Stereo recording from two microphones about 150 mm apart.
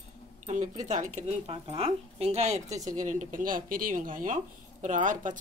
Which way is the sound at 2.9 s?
60° right (ahead or behind).